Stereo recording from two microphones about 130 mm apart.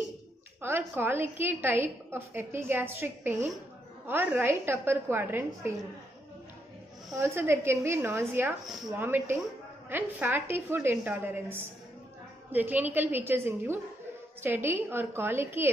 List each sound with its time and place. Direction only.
0.6 s a woman's voice: 15° right (ahead or behind)
7.2 s a woman's voice: 20° right (ahead or behind)